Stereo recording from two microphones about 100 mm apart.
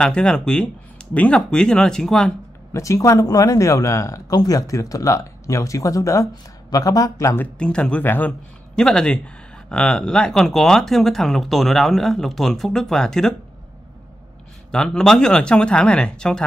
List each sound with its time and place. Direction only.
0.0 s speech: 10° left (ahead or behind)
2.7 s speech: 30° left (ahead or behind)
7.5 s a man's voice: 10° left (ahead or behind)
8.7 s speech: 5° left (ahead or behind)
14.7 s speech: 5° left (ahead or behind)